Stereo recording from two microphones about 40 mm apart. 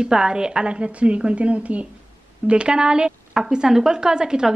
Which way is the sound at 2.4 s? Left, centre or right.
Right.